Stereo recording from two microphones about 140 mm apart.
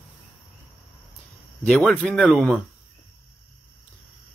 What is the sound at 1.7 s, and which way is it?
Speech, centre (ahead or behind).